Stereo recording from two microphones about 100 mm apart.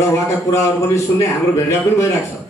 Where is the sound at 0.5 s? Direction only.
30° left (ahead or behind).